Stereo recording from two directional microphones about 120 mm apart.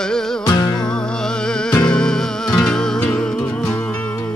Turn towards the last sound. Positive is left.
turn(degrees=15)  # may be behind; listen again after turning